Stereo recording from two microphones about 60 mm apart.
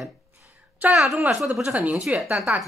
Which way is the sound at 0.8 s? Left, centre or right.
Right.